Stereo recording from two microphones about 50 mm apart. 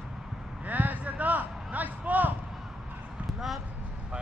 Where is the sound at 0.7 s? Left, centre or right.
Right.